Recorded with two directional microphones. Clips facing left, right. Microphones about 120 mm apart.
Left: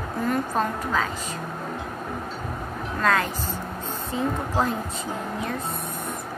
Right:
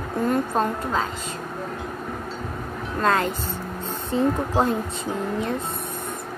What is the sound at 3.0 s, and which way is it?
Speech, 30° right (ahead or behind).